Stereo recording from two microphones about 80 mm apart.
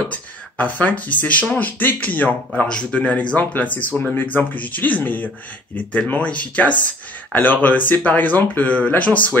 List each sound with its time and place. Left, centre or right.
0.1 s speech: centre